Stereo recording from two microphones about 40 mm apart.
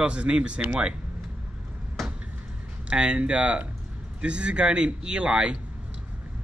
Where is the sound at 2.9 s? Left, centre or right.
Right.